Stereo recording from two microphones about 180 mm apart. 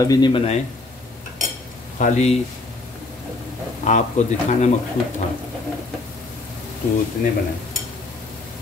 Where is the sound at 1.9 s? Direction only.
40° left (ahead or behind).